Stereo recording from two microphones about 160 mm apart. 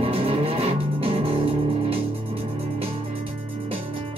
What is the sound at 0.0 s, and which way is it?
Music, 35° right (ahead or behind).